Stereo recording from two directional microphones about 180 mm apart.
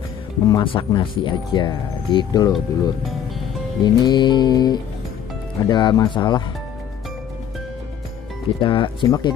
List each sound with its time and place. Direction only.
0.5 s speech: 25° left (ahead or behind)
2.5 s speech: centre (ahead or behind)
3.8 s speech: 25° left (ahead or behind)
8.5 s speech: 30° left (ahead or behind)